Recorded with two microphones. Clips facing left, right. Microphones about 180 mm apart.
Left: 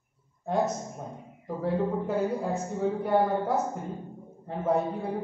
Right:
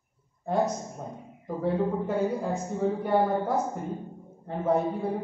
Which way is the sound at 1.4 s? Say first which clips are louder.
Right 1 dB; centre (ahead or behind).